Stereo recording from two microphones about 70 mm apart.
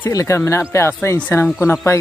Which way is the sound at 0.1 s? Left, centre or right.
Left.